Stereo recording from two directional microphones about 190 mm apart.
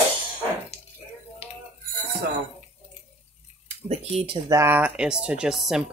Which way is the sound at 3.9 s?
35° right (ahead or behind).